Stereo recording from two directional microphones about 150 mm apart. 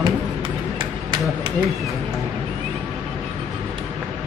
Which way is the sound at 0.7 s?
30° right (ahead or behind).